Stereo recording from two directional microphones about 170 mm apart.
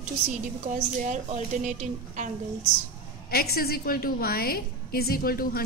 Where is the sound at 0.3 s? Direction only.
45° right (ahead or behind).